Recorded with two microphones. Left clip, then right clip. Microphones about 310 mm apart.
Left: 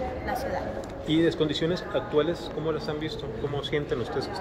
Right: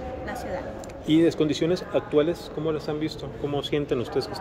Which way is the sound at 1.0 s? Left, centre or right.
Right.